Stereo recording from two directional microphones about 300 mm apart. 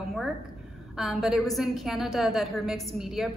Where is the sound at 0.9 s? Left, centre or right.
Centre.